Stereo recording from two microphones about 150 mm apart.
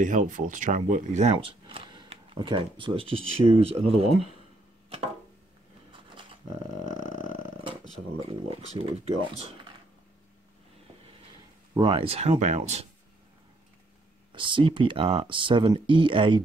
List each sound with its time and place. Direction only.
0.0 s speech: 60° right (ahead or behind)
1.3 s speech: 35° right (ahead or behind)
4.8 s a sound: 45° right (ahead or behind)
8.2 s speech: 40° right (ahead or behind)
11.7 s speech: 35° right (ahead or behind); by 12.8 s 50° right (ahead or behind)
14.3 s speech: 35° right (ahead or behind)